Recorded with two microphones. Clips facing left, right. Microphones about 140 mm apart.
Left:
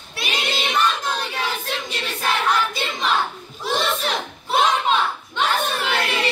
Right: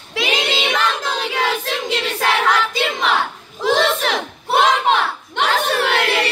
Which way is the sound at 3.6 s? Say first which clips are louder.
Right 6 dB; 90° right.